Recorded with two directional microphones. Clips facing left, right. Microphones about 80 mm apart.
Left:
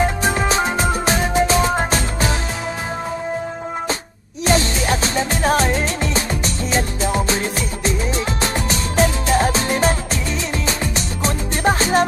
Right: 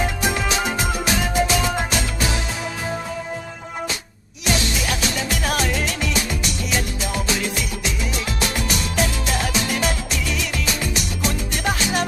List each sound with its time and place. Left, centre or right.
0.2 s music: left
4.5 s music: left